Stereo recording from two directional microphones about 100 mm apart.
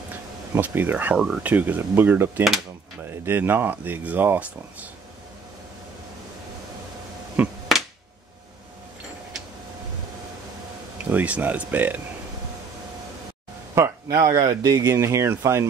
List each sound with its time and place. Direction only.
0.1 s speech: 20° right (ahead or behind)
7.4 s speech: 15° right (ahead or behind)
11.1 s speech: 15° right (ahead or behind)
14.0 s speech: 40° right (ahead or behind)